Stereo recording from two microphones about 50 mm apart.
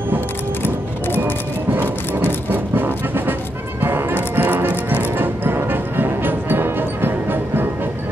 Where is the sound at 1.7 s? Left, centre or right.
Right.